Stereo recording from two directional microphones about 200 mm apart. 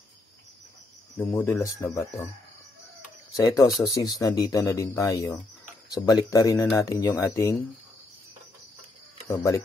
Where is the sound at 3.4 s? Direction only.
15° left (ahead or behind).